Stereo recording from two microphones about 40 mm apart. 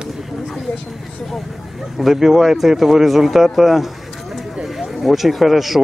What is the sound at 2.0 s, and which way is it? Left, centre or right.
Speech, centre.